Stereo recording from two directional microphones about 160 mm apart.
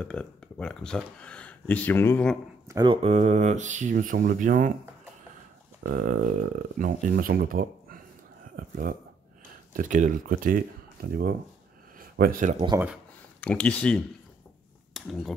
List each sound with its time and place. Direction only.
0.0 s speech: 5° left (ahead or behind)
2.7 s speech: 25° right (ahead or behind)
3.0 s speech: 45° right (ahead or behind)
5.9 s speech: 60° right (ahead or behind)
13.4 s speech: 5° left (ahead or behind)